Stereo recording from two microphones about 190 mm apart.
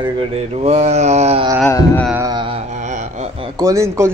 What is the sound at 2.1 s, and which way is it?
Carnatic music, 15° right (ahead or behind).